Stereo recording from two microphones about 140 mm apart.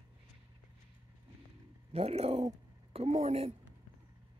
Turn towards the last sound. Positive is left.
turn(degrees=-50)  # may be behind; listen again after turning